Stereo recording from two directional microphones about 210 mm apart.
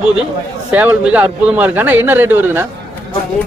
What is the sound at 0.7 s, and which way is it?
Speech, 5° right (ahead or behind).